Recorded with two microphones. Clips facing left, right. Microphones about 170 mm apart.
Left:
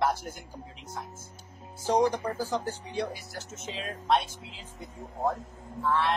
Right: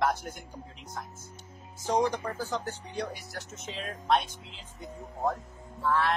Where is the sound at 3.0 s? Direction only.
25° left (ahead or behind).